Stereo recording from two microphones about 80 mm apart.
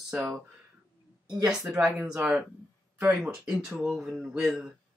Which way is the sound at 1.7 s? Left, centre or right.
Centre.